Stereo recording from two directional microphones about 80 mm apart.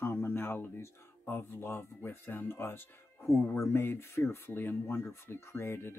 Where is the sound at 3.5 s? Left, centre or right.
Left.